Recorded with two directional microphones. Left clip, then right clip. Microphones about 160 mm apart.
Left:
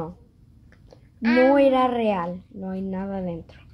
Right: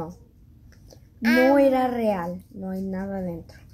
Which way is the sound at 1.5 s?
Centre (ahead or behind).